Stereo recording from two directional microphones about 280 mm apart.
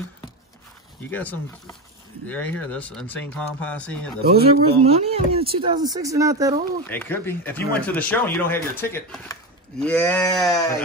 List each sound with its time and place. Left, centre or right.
1.1 s speech: centre
4.6 s speech: right
6.9 s speech: centre